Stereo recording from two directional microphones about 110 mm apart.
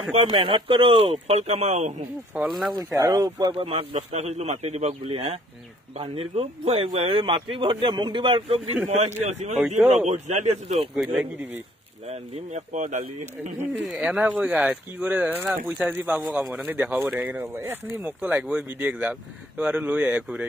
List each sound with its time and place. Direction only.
0.3 s speech: 55° right (ahead or behind)
1.0 s speech: 65° right (ahead or behind); by 2.0 s 90° right
2.3 s speech: centre (ahead or behind)
3.0 s speech: 35° right (ahead or behind)
3.5 s a man's voice: 60° right (ahead or behind)
9.2 s speech: 90° right
11.0 s speech: centre (ahead or behind)
12.1 s speech: 90° right
13.8 s speech: 5° right (ahead or behind)